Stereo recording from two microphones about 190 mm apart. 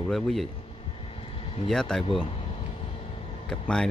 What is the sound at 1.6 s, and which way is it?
Speech, 5° left (ahead or behind).